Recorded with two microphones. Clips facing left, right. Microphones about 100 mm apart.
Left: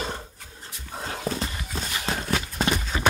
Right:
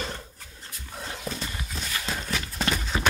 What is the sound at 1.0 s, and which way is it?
Horse, 40° left (ahead or behind).